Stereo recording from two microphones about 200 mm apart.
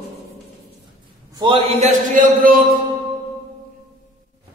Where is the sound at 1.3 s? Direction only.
25° right (ahead or behind); by 2.8 s 45° right (ahead or behind).